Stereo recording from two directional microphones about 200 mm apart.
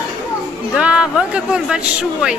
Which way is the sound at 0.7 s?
5° right (ahead or behind).